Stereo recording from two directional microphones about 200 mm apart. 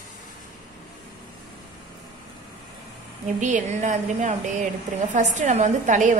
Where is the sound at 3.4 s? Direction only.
40° right (ahead or behind).